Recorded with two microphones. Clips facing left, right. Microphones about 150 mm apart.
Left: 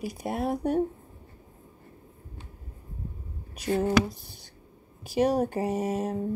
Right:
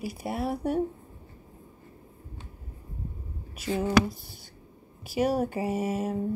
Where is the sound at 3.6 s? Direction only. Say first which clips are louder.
Even; 45° left (ahead or behind).